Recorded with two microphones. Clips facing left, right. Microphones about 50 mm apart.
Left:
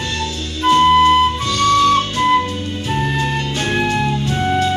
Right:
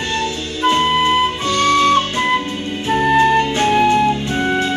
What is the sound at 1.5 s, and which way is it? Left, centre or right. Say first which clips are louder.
Flute: right 1 dB; right.